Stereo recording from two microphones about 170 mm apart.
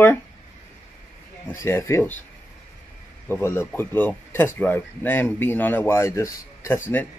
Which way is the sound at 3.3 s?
15° left (ahead or behind).